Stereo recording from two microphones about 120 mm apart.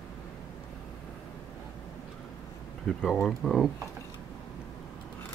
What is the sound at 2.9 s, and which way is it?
Speech, centre (ahead or behind).